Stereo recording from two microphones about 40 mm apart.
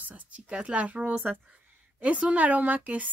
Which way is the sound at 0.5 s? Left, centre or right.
Right.